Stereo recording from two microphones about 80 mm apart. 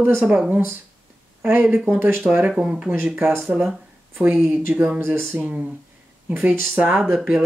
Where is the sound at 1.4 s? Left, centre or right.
Right.